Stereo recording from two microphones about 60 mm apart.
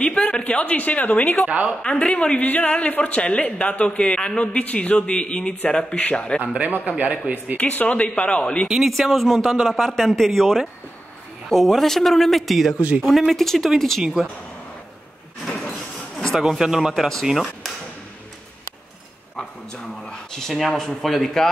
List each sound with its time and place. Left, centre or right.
0.0 s a woman's voice: centre
1.5 s a man's voice: right
1.8 s a woman's voice: centre
6.4 s a man's voice: centre
7.5 s a woman's voice: left
8.6 s a man's voice: centre
16.3 s speech: centre
19.3 s a sound: centre
20.7 s speech: centre